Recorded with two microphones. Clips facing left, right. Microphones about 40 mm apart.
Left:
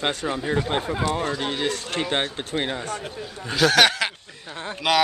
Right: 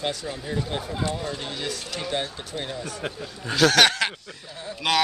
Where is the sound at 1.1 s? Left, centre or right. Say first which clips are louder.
Left 5 dB; left.